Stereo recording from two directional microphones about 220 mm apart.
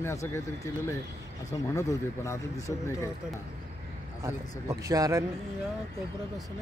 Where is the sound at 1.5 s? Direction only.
15° left (ahead or behind).